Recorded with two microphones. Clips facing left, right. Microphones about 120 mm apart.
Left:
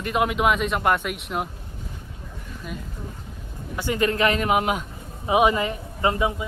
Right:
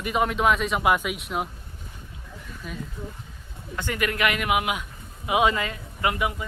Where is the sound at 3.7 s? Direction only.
15° left (ahead or behind).